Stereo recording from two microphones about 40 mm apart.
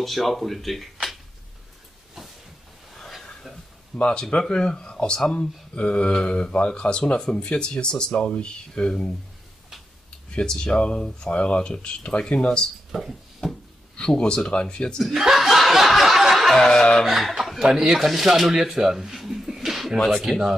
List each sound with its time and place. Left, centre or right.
0.0 s speech: centre
3.9 s speech: left
10.3 s speech: left
12.9 s a sound: centre
13.9 s speech: left
15.1 s chuckle: centre
16.5 s a sound: centre
17.0 s speech: centre
17.6 s speech: centre
17.9 s speech: centre
20.0 s speech: centre
20.2 s speech: centre